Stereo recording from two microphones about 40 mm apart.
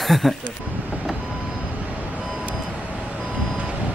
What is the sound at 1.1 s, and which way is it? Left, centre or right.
Vehicle, right.